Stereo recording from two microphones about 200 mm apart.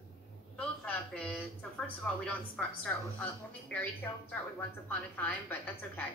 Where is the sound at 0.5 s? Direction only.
5° left (ahead or behind).